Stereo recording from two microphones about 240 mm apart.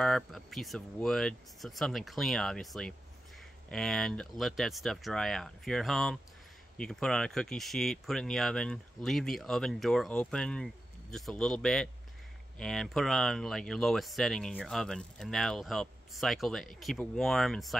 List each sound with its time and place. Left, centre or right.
0.0 s speech: centre